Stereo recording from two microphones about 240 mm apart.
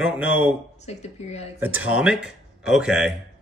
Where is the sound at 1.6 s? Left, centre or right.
Centre.